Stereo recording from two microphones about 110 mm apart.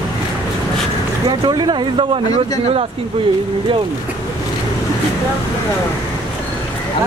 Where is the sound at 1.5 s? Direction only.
40° right (ahead or behind).